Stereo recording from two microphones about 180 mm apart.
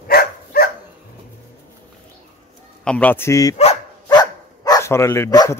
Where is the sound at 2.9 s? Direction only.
10° left (ahead or behind).